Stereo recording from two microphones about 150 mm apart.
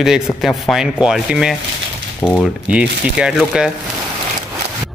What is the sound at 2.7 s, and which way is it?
Speech, 5° right (ahead or behind).